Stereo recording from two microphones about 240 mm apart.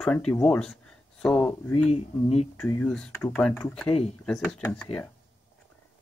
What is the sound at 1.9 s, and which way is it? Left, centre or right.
Speech, left.